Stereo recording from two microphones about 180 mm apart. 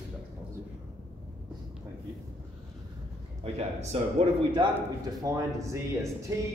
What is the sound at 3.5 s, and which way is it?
Speech, 35° right (ahead or behind).